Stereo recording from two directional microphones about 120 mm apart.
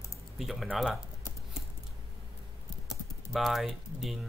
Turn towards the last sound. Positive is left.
turn(degrees=-5)  # may be behind; listen again after turning